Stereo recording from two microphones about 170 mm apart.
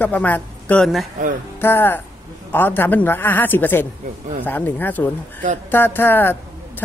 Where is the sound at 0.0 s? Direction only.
10° left (ahead or behind).